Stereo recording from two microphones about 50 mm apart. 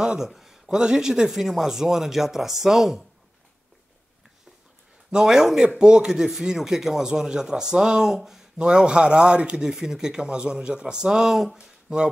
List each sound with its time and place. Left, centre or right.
0.0 s a man's voice: centre
0.3 s speech: centre
5.1 s speech: centre
8.6 s speech: centre
11.5 s speech: centre